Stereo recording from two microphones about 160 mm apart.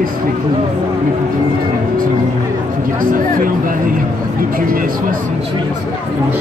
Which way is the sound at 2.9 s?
60° right (ahead or behind).